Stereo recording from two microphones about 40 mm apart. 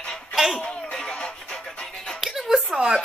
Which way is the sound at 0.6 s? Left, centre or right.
Centre.